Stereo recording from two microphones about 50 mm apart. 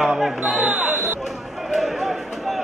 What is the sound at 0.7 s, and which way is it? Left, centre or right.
Chatter, right.